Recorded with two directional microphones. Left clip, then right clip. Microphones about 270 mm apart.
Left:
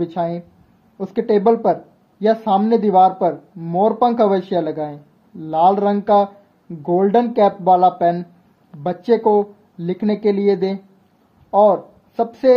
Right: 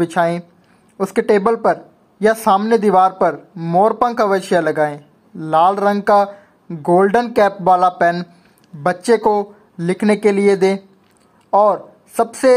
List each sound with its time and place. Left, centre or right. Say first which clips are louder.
0.0 s a woman's voice: right 6 dB; centre